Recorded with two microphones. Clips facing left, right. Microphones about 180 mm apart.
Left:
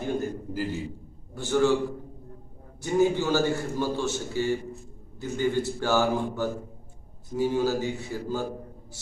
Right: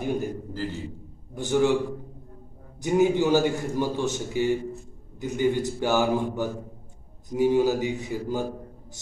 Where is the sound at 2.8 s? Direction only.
15° right (ahead or behind).